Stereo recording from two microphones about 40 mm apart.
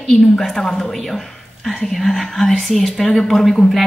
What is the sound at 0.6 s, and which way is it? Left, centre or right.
Speech, centre.